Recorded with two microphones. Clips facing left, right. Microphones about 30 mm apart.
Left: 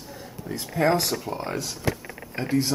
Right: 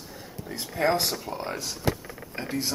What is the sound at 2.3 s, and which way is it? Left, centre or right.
Speech, centre.